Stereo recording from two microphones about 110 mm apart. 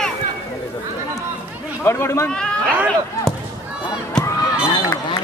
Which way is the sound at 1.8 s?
25° left (ahead or behind).